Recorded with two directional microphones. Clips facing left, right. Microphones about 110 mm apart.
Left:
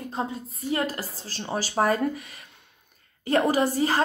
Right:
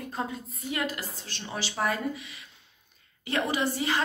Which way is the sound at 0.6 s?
35° left (ahead or behind).